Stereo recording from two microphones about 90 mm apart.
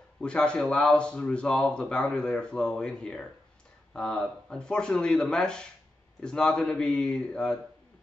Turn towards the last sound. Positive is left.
turn(degrees=10)  # may be behind; listen again after turning